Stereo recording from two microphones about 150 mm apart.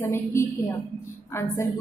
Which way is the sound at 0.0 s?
15° left (ahead or behind).